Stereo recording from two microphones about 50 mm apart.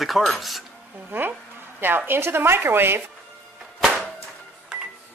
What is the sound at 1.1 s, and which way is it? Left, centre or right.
A woman's voice, right.